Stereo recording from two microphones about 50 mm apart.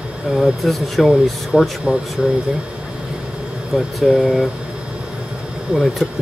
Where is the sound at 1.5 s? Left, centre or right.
Centre.